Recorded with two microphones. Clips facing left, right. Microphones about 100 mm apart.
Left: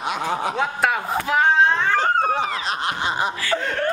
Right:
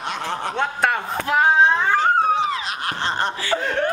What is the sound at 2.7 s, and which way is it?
Snicker, 25° left (ahead or behind).